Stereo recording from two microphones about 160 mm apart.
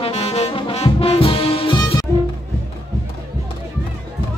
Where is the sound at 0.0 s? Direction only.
40° left (ahead or behind).